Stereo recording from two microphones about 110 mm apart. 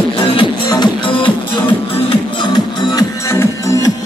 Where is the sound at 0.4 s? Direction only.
45° left (ahead or behind).